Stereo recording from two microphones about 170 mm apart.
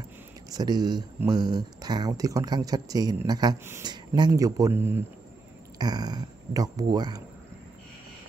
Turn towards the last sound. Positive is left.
turn(degrees=-25)  # may be behind; listen again after turning